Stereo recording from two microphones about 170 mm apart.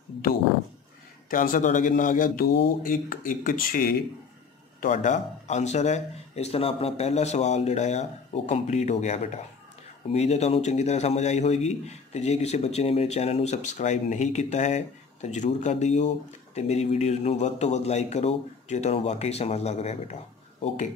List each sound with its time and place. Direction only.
1.3 s speech: 50° left (ahead or behind)
4.7 s a man's voice: 50° left (ahead or behind)